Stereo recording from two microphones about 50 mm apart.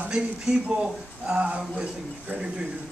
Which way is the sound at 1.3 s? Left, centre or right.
Right.